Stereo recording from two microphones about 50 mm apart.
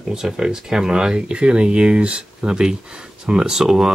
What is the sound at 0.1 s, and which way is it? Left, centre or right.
Speech, centre.